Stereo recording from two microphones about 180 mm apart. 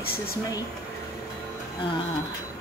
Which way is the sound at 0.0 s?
55° left (ahead or behind).